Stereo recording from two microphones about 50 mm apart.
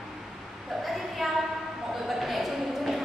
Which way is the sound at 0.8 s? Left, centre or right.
Centre.